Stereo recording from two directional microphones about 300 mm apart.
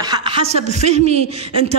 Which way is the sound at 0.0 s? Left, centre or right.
Centre.